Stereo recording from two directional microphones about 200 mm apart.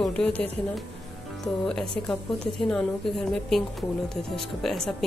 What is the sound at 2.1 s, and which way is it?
A woman's voice, 5° left (ahead or behind).